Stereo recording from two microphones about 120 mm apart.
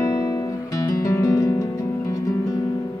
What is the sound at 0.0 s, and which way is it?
Music, 30° left (ahead or behind).